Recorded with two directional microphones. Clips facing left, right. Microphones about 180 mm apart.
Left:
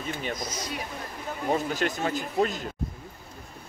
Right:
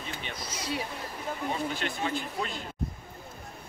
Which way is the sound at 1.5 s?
45° left (ahead or behind).